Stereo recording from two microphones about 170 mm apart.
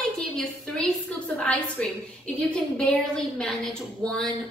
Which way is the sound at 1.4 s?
5° left (ahead or behind).